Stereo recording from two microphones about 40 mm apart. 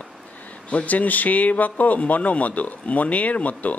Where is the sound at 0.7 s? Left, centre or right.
Left.